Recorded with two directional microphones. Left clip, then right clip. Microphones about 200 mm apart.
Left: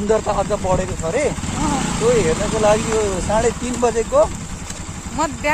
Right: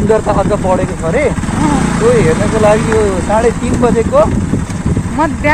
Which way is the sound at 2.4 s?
15° left (ahead or behind).